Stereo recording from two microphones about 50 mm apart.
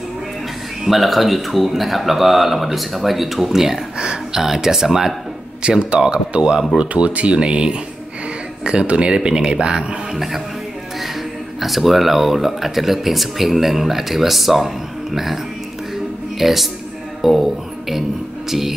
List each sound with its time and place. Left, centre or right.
0.8 s speech: centre
5.6 s speech: right
10.1 s speech: centre
11.6 s speech: centre
16.3 s speech: centre